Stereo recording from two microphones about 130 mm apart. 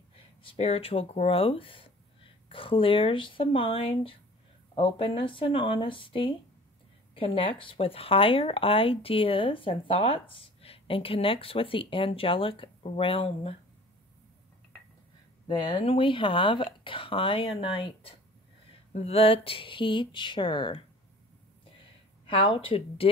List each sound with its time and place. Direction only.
0.4 s speech: 45° left (ahead or behind)
15.4 s speech: 35° left (ahead or behind)
22.2 s speech: 45° left (ahead or behind)